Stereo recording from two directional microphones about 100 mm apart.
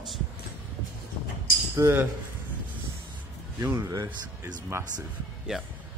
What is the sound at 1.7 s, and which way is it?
Speech, 25° right (ahead or behind).